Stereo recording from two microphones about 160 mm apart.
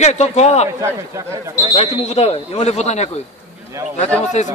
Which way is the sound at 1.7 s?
45° left (ahead or behind).